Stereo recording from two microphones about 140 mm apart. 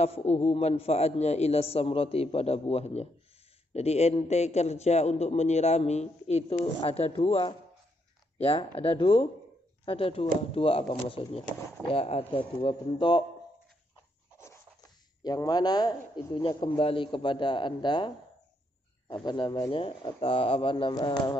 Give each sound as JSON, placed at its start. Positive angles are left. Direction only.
{"t": 0.0, "sound": "a man's voice", "side_deg": 50}
{"t": 15.2, "sound": "speech", "side_deg": 30}